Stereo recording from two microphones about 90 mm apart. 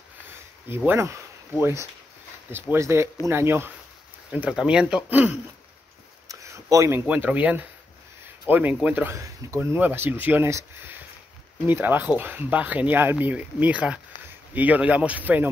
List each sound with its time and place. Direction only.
0.7 s speech: 25° right (ahead or behind)
4.3 s speech: 15° right (ahead or behind)
6.2 s a sound: 35° right (ahead or behind)
7.1 s speech: 15° right (ahead or behind)
9.1 s speech: 30° right (ahead or behind)